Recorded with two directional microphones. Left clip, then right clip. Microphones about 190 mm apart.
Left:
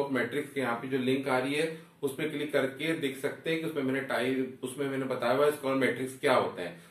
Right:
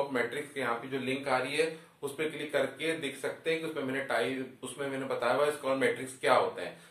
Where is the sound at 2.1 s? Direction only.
15° right (ahead or behind).